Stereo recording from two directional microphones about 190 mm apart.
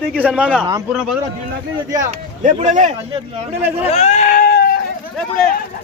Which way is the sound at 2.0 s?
40° right (ahead or behind).